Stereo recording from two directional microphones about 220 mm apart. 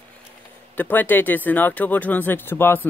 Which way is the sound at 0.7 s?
10° left (ahead or behind).